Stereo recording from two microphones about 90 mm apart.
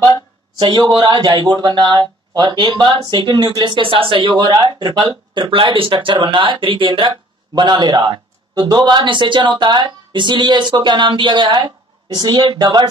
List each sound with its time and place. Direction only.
0.6 s speech: 55° right (ahead or behind); by 4.5 s 70° right (ahead or behind)
4.5 s speech: 55° right (ahead or behind)